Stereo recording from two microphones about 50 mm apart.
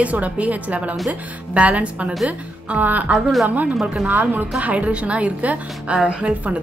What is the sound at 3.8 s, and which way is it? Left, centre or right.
Speech, right.